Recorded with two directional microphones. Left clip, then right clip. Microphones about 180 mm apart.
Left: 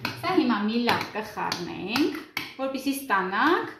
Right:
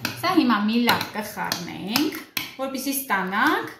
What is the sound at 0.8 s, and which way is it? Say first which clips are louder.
Speech: right 3 dB; 20° left (ahead or behind).